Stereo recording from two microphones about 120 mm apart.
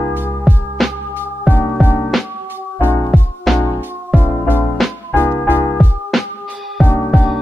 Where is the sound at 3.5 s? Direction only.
Centre (ahead or behind).